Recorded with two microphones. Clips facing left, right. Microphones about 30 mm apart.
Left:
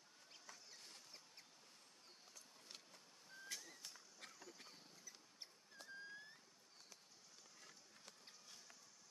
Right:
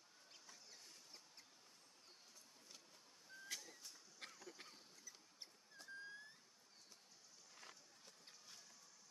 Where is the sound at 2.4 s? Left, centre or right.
Left.